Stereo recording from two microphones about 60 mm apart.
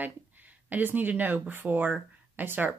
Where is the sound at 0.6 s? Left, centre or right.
Right.